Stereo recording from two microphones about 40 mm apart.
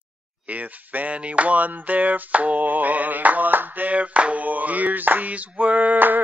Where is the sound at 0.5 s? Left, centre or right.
Right.